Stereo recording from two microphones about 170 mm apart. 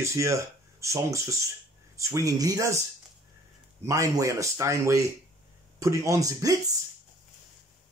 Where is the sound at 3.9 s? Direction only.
20° right (ahead or behind).